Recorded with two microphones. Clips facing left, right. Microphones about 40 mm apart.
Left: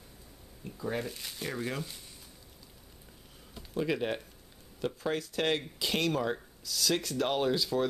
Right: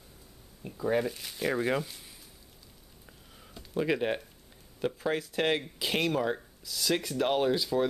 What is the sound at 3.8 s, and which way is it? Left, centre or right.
Speech, centre.